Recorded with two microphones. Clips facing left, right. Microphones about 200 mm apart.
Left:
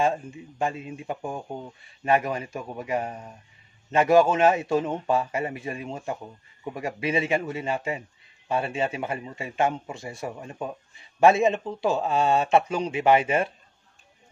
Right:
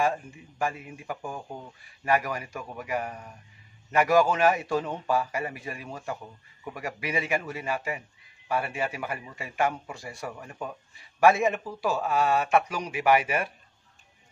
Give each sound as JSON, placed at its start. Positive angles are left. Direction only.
{"t": 0.0, "sound": "a man's voice", "side_deg": 25}